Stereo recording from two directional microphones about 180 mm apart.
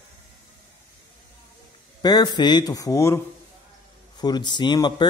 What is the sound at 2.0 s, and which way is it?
Speech, 20° left (ahead or behind).